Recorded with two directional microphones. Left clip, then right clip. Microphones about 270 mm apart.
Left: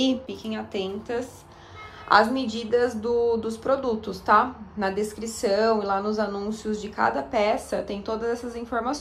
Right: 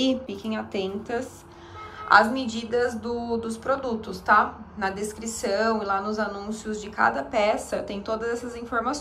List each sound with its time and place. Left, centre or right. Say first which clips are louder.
0.0 s a woman's voice: even; centre